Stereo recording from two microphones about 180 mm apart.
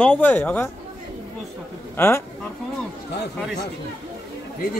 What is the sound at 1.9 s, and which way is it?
Speech, 15° left (ahead or behind).